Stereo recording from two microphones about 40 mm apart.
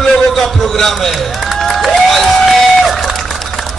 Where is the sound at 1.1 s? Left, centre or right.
Centre.